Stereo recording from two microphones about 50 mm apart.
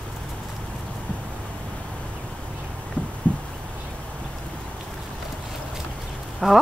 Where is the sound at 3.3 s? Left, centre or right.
Left.